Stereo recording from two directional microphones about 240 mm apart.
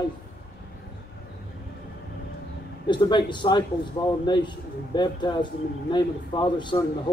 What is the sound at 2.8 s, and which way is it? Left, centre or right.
Speech, centre.